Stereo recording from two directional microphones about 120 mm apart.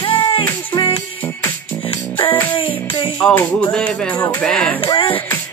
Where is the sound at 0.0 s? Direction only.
45° left (ahead or behind).